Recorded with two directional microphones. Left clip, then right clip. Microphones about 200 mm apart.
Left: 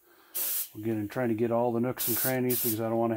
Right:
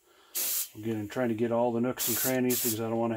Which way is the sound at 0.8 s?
35° left (ahead or behind).